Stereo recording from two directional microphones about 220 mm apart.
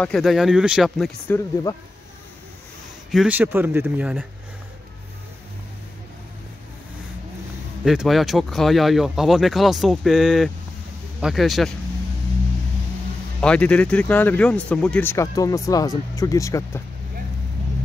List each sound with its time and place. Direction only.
0.0 s speech: centre (ahead or behind)
3.1 s speech: 5° right (ahead or behind)
7.8 s speech: centre (ahead or behind)
13.4 s speech: 5° left (ahead or behind)